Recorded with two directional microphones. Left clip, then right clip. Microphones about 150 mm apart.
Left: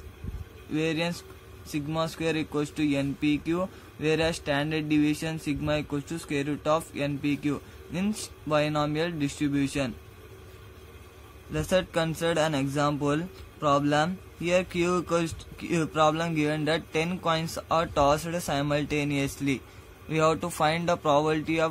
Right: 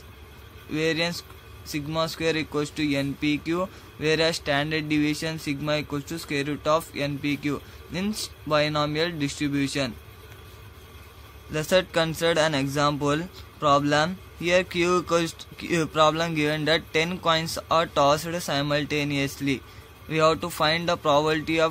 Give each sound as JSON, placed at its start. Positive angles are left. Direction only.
{"t": 0.7, "sound": "speech", "side_deg": 0}
{"t": 11.5, "sound": "speech", "side_deg": 0}